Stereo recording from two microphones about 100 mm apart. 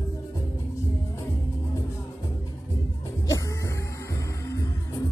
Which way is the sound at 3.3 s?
35° left (ahead or behind).